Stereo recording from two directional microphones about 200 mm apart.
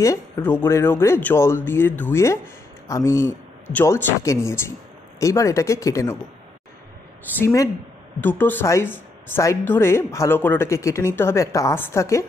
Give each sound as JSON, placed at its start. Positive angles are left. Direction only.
{"t": 0.0, "sound": "speech", "side_deg": 10}
{"t": 7.3, "sound": "speech", "side_deg": 15}